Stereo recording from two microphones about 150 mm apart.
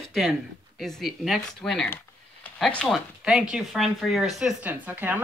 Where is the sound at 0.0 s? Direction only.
Centre (ahead or behind).